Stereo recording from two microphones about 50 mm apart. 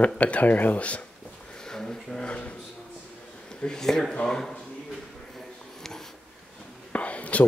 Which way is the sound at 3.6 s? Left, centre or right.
Centre.